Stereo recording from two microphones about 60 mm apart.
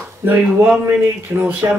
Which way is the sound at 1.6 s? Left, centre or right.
Right.